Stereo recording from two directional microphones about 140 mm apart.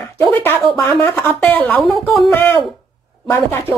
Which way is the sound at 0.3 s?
15° left (ahead or behind).